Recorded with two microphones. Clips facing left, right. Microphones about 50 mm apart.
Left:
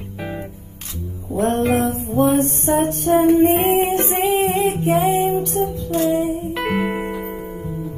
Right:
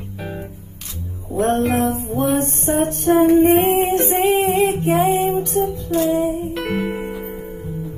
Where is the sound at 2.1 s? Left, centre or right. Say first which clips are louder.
Left 6 dB; left.